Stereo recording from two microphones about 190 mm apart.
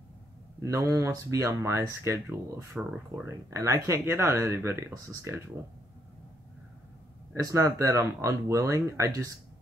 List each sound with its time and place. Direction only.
0.6 s speech: 15° right (ahead or behind)
2.8 s speech: 5° right (ahead or behind)
3.3 s speech: 15° right (ahead or behind)
7.3 s speech: 15° right (ahead or behind)